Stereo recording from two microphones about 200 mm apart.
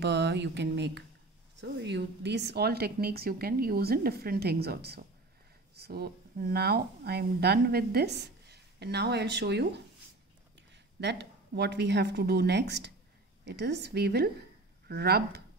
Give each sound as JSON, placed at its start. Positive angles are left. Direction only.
{"t": 0.0, "sound": "a woman's voice", "side_deg": -60}
{"t": 11.0, "sound": "a woman's voice", "side_deg": -60}